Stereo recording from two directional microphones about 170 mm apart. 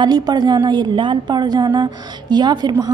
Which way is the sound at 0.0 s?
25° right (ahead or behind).